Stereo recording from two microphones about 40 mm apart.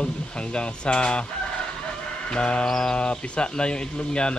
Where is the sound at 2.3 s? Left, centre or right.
Left.